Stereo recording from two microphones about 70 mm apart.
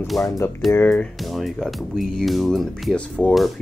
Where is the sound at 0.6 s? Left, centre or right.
Centre.